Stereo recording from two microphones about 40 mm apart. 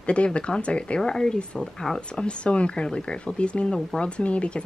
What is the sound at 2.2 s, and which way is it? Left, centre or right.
Speech, left.